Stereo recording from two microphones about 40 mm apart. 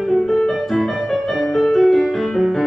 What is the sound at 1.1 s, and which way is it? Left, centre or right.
Music, centre.